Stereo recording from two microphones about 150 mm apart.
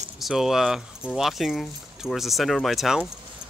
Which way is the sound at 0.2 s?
Centre (ahead or behind).